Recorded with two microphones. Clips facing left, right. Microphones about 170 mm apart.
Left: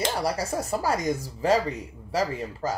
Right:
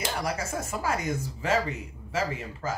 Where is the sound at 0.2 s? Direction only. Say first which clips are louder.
Left 4 dB; 35° left (ahead or behind).